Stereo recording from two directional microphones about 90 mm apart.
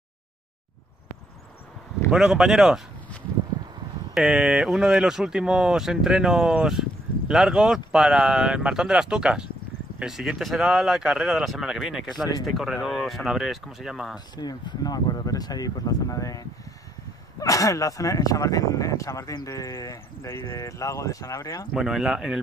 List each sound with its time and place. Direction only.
2.0 s speech: 5° right (ahead or behind)
4.1 s speech: 5° right (ahead or behind)
14.1 s speech: 50° left (ahead or behind)
21.7 s speech: 5° right (ahead or behind)